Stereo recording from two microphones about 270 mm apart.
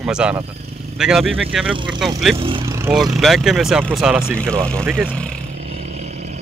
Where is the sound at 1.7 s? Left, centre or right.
Centre.